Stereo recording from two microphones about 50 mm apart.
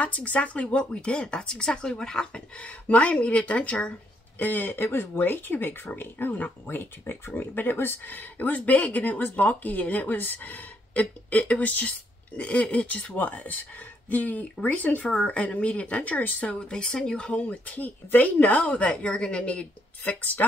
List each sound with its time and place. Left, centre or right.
0.0 s speech: left
4.4 s speech: left
6.6 s speech: left
16.5 s speech: centre
17.3 s speech: left